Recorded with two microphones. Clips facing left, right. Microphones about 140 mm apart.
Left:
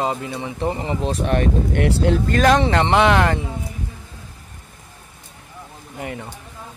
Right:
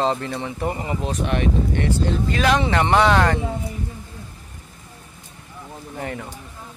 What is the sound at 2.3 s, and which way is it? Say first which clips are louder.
Speech: left 3 dB; 40° left (ahead or behind).